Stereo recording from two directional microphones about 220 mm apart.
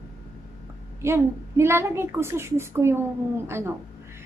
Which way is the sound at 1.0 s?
10° right (ahead or behind).